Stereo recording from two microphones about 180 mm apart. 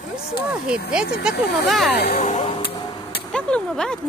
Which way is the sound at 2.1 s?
40° left (ahead or behind).